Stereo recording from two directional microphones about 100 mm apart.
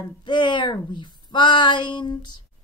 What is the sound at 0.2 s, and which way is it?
A woman's voice, 50° left (ahead or behind).